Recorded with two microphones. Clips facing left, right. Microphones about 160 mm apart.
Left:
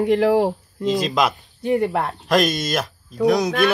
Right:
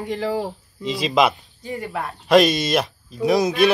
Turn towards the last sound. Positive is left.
turn(degrees=0)  # may be behind; listen again after turning